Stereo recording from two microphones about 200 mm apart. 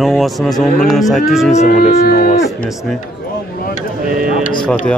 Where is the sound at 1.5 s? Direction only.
40° left (ahead or behind).